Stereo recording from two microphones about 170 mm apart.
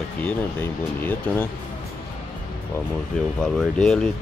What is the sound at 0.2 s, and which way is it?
Speech, 10° left (ahead or behind).